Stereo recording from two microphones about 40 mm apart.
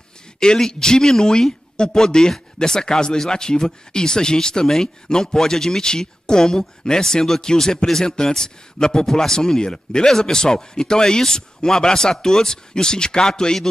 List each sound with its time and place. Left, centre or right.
0.4 s speech: centre